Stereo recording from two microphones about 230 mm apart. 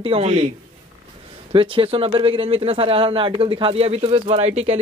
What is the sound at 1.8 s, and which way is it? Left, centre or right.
A man's voice, right.